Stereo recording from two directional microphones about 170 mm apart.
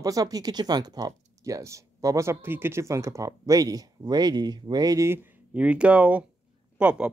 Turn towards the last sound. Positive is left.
turn(degrees=-5)  # may be behind; listen again after turning